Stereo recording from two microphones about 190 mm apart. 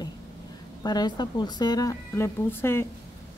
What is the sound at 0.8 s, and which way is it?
A woman's voice, 20° left (ahead or behind).